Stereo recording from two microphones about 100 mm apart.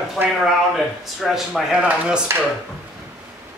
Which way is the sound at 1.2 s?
Centre (ahead or behind).